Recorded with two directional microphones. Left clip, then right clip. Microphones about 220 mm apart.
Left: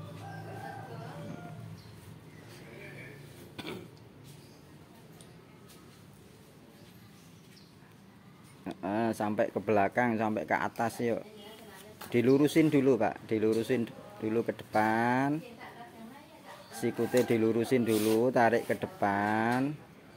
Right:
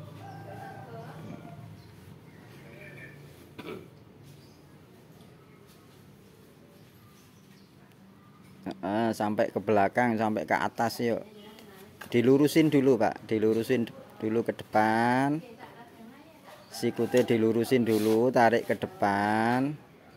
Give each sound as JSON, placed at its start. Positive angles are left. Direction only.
{"t": 8.6, "sound": "speech", "side_deg": -15}
{"t": 16.7, "sound": "speech", "side_deg": -15}